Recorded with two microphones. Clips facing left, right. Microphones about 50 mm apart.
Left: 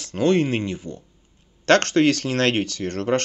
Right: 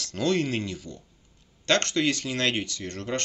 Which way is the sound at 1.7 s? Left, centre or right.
Left.